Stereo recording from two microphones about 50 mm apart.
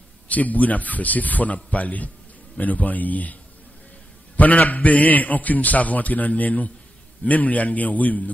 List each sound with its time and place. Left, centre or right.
0.3 s a man's voice: left
4.4 s a man's voice: left